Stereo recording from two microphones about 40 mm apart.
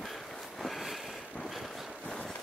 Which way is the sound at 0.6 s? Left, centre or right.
Centre.